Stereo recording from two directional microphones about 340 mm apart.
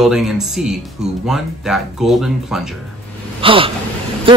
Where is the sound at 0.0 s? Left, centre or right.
Centre.